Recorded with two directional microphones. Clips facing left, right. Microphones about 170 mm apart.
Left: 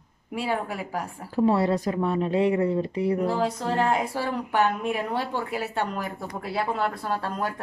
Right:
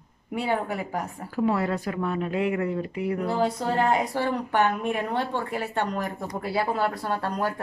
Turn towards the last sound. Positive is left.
turn(degrees=0)  # may be behind; listen again after turning